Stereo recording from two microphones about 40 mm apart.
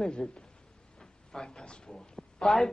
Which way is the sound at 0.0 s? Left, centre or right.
Centre.